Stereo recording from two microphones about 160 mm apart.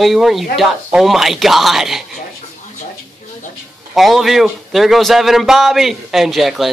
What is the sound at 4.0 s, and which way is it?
Speech, centre (ahead or behind).